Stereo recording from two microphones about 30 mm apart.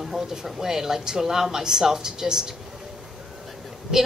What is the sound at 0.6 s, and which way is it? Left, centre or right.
Speech, centre.